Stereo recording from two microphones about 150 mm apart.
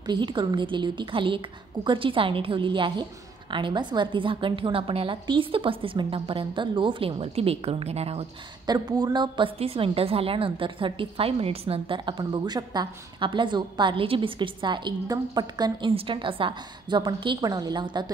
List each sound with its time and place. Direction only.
0.0 s a woman's voice: 30° right (ahead or behind)
8.6 s a woman's voice: 25° right (ahead or behind)